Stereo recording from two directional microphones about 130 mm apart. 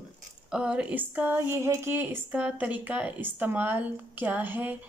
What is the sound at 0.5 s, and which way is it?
A woman's voice, 10° right (ahead or behind).